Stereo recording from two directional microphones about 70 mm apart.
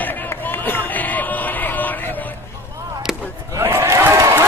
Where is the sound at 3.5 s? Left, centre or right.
Right.